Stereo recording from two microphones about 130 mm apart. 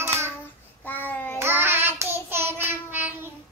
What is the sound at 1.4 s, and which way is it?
Child singing, 15° right (ahead or behind).